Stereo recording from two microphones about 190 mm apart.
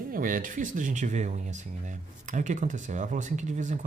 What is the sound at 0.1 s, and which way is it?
Speech, 45° right (ahead or behind).